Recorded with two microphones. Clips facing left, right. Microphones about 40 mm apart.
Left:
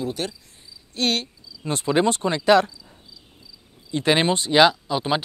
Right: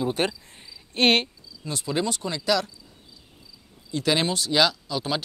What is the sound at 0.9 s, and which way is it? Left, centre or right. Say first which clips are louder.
Cricket: right 4 dB; right.